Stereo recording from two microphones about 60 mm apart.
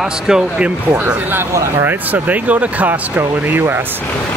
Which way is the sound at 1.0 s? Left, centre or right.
Right.